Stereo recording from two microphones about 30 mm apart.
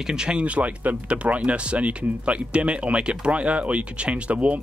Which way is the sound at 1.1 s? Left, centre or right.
Right.